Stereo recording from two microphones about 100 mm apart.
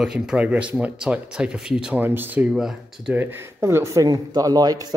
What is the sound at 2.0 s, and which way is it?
Speech, 20° right (ahead or behind).